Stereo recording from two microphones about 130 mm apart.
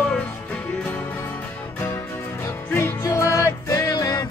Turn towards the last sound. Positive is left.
turn(degrees=30)  # may be behind; listen again after turning